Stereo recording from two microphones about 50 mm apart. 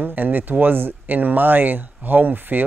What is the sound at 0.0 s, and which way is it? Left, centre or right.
A man's voice, right.